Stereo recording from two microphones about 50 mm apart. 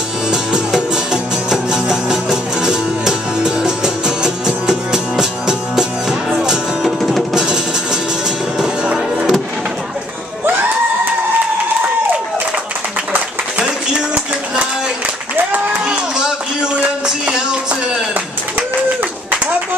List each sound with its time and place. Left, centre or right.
0.3 s music: centre
7.0 s music: centre
7.3 s music: centre
13.9 s a sound: centre
15.8 s run: centre
17.0 s a sound: centre